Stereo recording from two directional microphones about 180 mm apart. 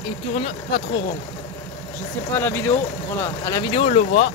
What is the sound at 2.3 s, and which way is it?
Speech, 10° left (ahead or behind).